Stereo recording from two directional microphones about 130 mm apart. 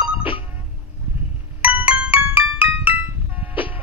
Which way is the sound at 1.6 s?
10° right (ahead or behind).